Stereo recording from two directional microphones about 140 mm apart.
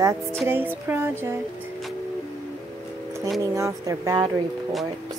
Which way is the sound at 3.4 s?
20° right (ahead or behind).